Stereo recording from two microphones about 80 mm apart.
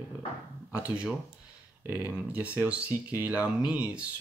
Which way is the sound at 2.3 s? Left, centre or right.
Centre.